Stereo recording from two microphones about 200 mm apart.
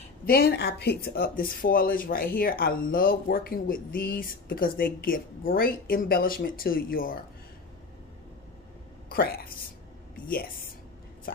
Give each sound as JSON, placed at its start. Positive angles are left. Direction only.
{"t": 0.2, "sound": "speech", "side_deg": 50}
{"t": 9.1, "sound": "a woman's voice", "side_deg": 50}